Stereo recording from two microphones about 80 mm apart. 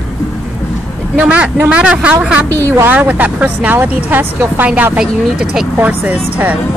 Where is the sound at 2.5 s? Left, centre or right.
Left.